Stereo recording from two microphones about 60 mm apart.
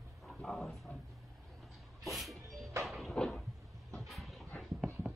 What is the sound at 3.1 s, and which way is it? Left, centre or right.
Cupboard open or close, centre.